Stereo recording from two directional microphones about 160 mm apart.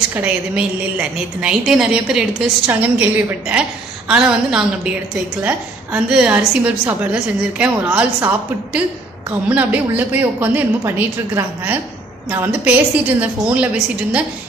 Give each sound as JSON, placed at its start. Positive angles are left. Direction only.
{"t": 0.1, "sound": "a woman's voice", "side_deg": -10}